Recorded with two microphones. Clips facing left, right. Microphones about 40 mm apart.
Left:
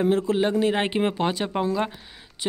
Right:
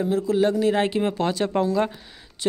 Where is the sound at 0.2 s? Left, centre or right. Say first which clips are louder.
Right 1 dB; left.